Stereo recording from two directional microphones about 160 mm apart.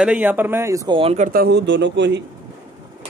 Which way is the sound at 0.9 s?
40° right (ahead or behind).